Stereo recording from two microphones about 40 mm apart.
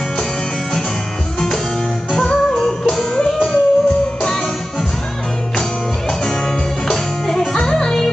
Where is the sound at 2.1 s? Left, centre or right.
Centre.